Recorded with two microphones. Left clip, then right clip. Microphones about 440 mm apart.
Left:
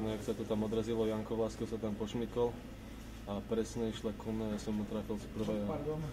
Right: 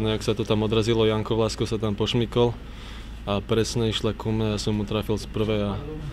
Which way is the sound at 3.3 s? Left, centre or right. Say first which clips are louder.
Right 13 dB; right.